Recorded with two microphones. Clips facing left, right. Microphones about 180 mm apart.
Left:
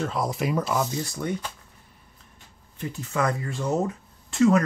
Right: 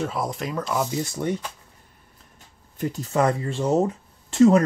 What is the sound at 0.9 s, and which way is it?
Speech, 25° right (ahead or behind).